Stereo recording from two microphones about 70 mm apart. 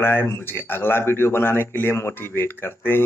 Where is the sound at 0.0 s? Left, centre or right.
Left.